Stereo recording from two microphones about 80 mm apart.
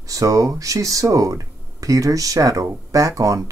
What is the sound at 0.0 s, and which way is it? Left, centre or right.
Speech, right.